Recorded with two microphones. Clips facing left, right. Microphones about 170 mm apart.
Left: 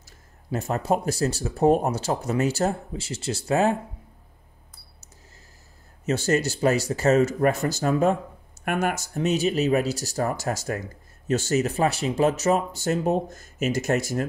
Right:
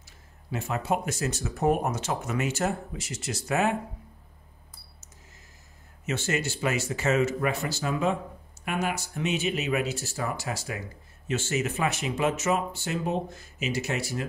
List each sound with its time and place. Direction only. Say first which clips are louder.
0.5 s speech: left 4 dB; 40° left (ahead or behind)
6.0 s speech: left 6 dB; 40° left (ahead or behind)